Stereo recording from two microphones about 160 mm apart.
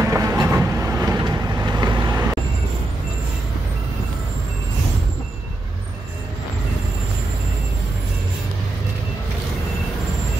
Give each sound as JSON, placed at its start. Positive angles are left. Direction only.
{"t": 0.0, "sound": "vehicle", "side_deg": -15}